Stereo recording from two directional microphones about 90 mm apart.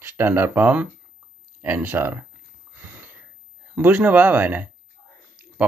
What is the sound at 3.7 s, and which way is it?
Speech, 20° right (ahead or behind).